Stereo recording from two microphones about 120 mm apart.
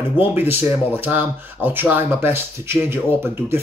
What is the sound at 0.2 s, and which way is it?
Speech, 15° right (ahead or behind).